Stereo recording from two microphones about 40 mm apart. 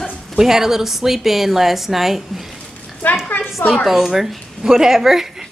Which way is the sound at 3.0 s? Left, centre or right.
Left.